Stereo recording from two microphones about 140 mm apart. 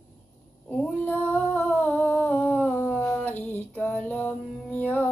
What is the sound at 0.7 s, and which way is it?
Humming, 10° left (ahead or behind).